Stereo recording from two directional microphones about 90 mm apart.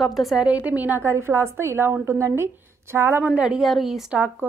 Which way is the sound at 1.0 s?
30° right (ahead or behind).